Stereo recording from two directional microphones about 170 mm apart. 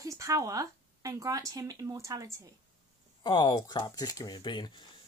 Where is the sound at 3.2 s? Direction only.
25° left (ahead or behind).